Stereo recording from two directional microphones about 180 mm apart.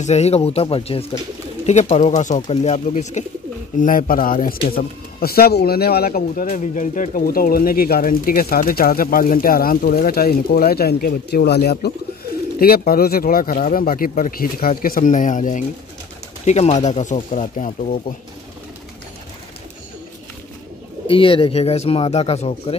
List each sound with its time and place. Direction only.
0.0 s a man's voice: 35° left (ahead or behind); by 6.5 s 55° left (ahead or behind)
6.5 s speech: 45° left (ahead or behind)
21.1 s speech: 30° left (ahead or behind)